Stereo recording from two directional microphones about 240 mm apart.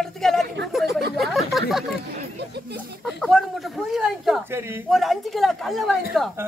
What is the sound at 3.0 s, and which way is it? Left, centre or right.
Speech, centre.